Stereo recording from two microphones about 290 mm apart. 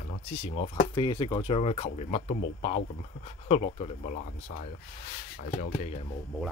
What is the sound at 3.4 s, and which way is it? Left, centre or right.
Speech, left.